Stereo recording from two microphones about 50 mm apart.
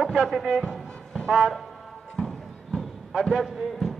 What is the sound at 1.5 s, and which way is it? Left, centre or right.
Music, centre.